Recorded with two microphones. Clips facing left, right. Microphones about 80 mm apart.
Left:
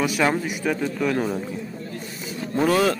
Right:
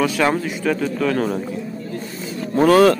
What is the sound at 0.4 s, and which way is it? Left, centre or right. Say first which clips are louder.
Speech: right 3 dB; left.